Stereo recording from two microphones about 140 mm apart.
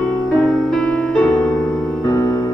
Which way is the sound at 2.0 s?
25° left (ahead or behind).